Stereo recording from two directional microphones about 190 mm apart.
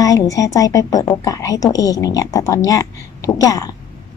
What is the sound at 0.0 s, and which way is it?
A woman's voice, 20° left (ahead or behind).